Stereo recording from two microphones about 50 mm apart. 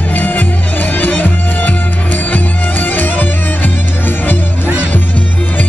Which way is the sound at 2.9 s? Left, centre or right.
Left.